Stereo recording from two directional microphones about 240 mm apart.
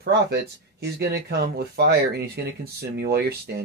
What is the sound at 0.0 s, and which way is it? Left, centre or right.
Speech, right.